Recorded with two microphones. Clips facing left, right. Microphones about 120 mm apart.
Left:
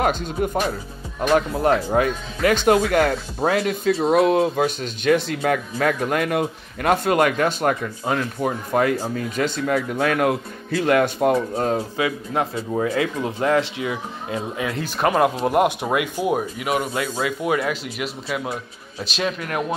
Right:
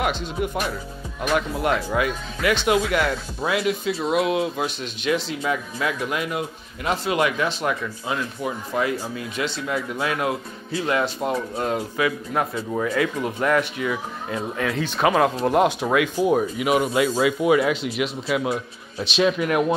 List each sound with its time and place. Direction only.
0.0 s speech: 45° left (ahead or behind)
12.0 s speech: 30° left (ahead or behind)
14.6 s speech: 5° left (ahead or behind)
16.5 s a man's voice: 5° right (ahead or behind)